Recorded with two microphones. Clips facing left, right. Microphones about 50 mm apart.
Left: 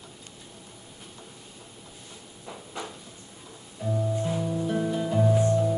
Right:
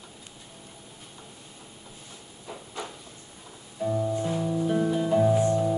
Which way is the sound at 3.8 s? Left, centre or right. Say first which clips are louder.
Right 2 dB; centre.